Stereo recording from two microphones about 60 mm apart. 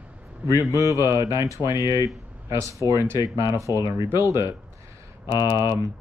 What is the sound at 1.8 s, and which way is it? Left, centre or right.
Speech, left.